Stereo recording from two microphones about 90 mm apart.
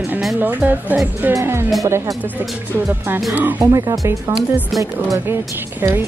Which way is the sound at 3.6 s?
40° right (ahead or behind).